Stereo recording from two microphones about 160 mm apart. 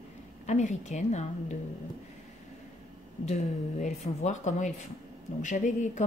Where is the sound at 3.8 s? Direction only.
45° left (ahead or behind).